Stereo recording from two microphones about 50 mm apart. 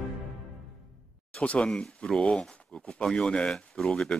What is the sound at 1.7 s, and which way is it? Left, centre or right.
Speech, centre.